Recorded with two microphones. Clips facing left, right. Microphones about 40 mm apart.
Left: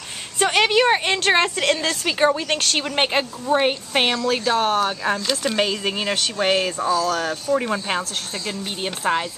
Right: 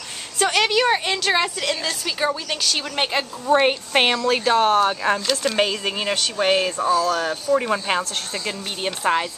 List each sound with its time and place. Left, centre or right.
0.4 s a woman's voice: left
2.8 s a woman's voice: left
3.4 s speech: centre